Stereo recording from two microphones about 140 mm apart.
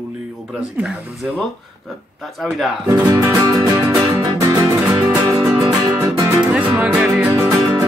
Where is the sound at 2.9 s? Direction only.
25° right (ahead or behind).